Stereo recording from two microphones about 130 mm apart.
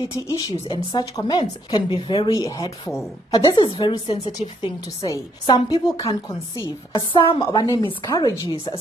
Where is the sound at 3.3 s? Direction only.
40° left (ahead or behind).